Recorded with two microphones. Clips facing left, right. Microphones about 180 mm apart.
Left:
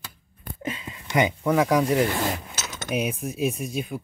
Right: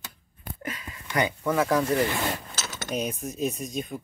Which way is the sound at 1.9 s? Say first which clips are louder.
Left 2 dB; 10° left (ahead or behind).